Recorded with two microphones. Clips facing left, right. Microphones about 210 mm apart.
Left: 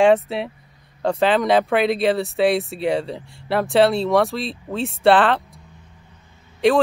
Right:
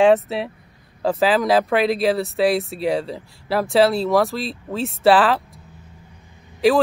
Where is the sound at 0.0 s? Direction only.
Centre (ahead or behind).